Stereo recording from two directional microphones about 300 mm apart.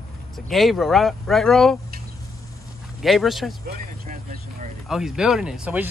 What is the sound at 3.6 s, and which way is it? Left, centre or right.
Vehicle, right.